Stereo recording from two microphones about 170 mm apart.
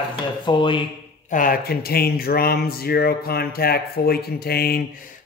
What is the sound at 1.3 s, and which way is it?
Speech, 55° left (ahead or behind).